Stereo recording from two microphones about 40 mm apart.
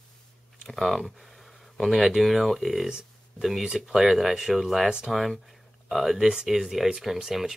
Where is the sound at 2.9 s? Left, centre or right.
Centre.